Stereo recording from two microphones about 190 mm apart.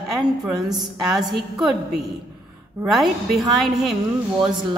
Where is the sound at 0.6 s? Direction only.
20° right (ahead or behind).